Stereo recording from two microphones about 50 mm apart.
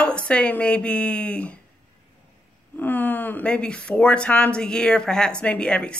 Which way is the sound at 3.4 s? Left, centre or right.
Left.